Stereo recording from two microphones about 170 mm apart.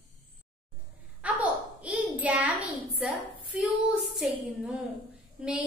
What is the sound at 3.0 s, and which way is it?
Speech, 5° right (ahead or behind).